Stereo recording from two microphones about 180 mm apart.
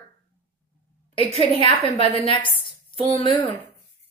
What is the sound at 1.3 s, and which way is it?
A woman's voice, 30° left (ahead or behind).